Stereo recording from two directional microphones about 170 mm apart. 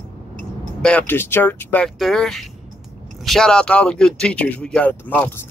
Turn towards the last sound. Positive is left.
turn(degrees=10)  # may be behind; listen again after turning